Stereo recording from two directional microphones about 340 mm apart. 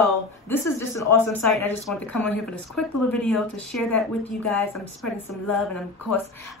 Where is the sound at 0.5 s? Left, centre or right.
Centre.